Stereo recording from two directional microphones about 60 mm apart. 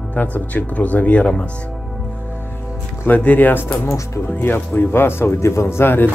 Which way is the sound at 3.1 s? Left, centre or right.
Left.